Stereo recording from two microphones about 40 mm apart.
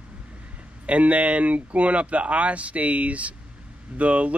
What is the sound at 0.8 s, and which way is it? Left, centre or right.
Speech, right.